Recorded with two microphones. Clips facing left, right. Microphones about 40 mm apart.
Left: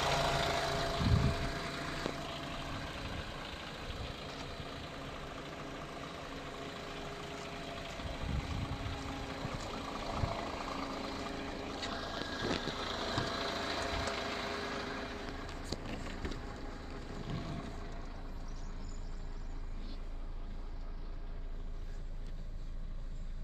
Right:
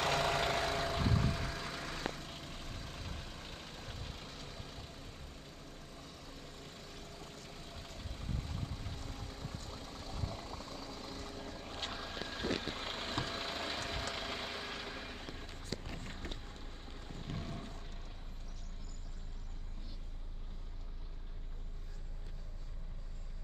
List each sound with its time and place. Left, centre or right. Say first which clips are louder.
0.0 s vehicle: even; centre
2.2 s vehicle: left 6 dB; left
9.0 s a sound: left 6 dB; left
10.9 s vehicle: left 6 dB; left
11.9 s vehicle: left 3 dB; centre
14.9 s vehicle: left 4 dB; left
16.3 s a sound: left 6 dB; left
17.2 s vehicle: left 1 dB; centre